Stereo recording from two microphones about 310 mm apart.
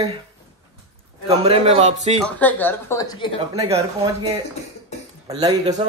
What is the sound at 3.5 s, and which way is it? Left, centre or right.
Speech, centre.